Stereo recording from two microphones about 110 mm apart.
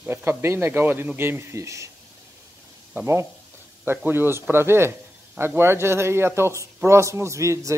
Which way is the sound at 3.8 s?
20° right (ahead or behind).